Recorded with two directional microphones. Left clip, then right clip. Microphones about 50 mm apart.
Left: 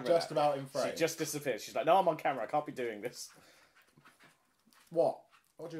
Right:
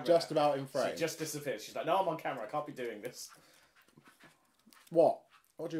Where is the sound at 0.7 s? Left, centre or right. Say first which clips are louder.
Left 1 dB; left.